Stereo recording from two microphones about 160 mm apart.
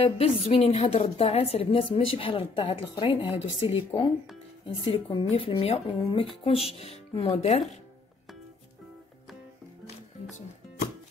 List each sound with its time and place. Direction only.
0.0 s speech: 35° left (ahead or behind)